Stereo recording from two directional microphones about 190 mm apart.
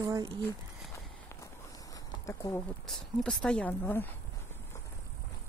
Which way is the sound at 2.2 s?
15° left (ahead or behind).